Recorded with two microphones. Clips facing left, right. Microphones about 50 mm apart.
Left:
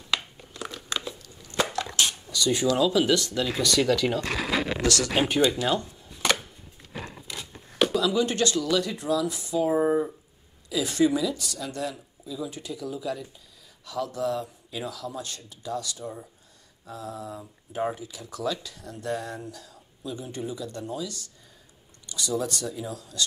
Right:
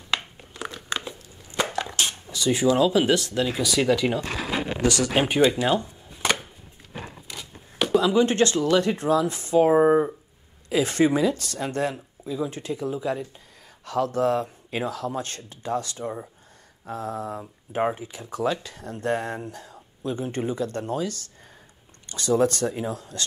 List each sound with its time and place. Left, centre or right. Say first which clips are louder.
0.1 s a sound: right 2 dB; right
1.7 s speech: even; right
5.3 s dishes: right 5 dB; right
7.9 s speech: right 5 dB; right